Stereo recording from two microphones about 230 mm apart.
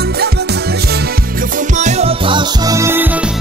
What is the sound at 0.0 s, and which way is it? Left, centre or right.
Music, right.